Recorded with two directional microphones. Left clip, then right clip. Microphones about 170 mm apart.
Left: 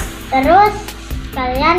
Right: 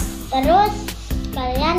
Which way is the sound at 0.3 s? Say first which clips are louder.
Left 5 dB; centre (ahead or behind).